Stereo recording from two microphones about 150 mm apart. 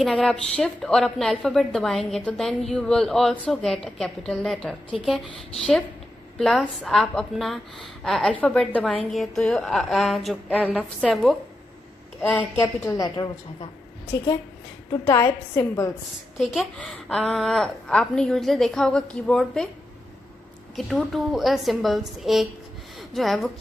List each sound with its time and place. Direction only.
0.0 s a woman's voice: centre (ahead or behind)
11.1 s a woman's voice: 5° left (ahead or behind)
12.9 s a woman's voice: 25° left (ahead or behind)
15.0 s a woman's voice: 20° left (ahead or behind)
16.3 s a woman's voice: centre (ahead or behind)
20.7 s a woman's voice: centre (ahead or behind)